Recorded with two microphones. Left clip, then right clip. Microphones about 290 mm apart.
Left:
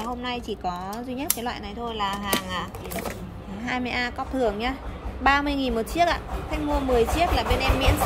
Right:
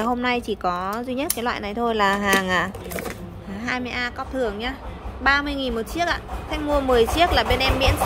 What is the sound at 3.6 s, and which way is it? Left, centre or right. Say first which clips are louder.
A woman's voice: right 1 dB; centre.